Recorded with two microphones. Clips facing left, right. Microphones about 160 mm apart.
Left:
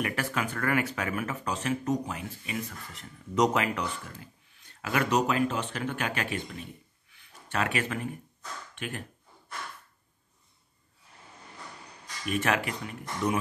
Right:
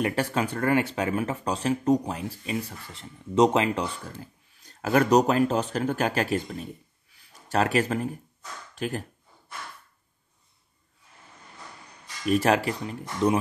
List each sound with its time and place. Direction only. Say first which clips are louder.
0.0 s speech: right 5 dB; 30° right (ahead or behind)
12.3 s speech: right 6 dB; 35° right (ahead or behind)